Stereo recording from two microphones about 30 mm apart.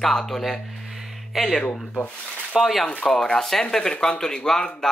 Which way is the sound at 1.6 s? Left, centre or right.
Left.